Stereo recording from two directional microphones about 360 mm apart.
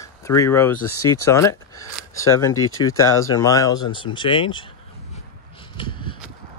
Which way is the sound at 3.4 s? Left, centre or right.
Centre.